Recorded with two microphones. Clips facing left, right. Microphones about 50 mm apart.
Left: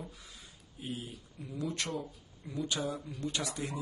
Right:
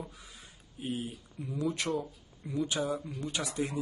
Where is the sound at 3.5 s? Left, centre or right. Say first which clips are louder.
Right 5 dB; right.